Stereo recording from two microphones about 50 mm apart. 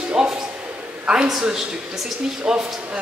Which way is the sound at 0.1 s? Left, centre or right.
Centre.